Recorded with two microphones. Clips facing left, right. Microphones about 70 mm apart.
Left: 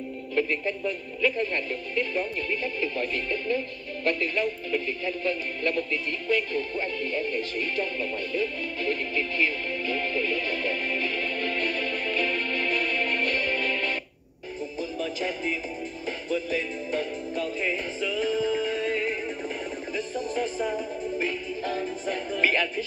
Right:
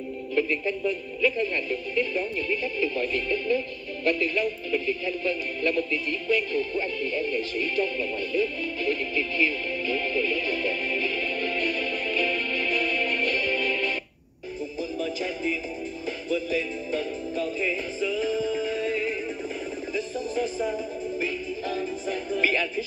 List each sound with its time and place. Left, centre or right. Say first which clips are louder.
0.3 s speech: right 1 dB; left
14.8 s music: right 1 dB; left